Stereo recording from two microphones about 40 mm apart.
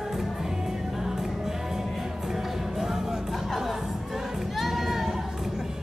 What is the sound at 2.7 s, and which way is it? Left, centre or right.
Music, centre.